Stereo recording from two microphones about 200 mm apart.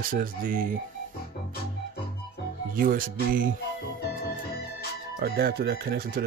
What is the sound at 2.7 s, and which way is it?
Speech, 45° right (ahead or behind).